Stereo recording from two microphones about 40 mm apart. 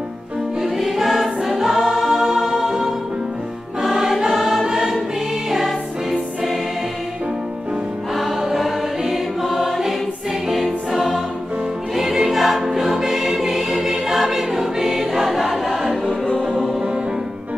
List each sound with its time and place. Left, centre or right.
0.6 s music: centre
2.2 s music: centre
4.3 s choir: centre
8.4 s choir: centre
10.5 s music: centre
12.0 s choir: centre
16.1 s music: left